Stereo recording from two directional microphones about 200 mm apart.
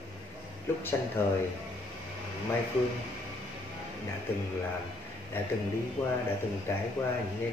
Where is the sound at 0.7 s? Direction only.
10° left (ahead or behind).